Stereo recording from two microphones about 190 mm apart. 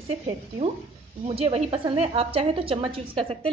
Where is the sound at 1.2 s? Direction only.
30° right (ahead or behind).